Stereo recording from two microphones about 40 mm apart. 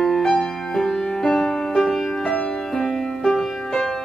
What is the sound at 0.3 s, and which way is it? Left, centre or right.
Music, centre.